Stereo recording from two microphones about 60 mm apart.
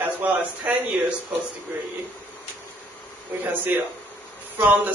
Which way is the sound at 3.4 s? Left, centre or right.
Right.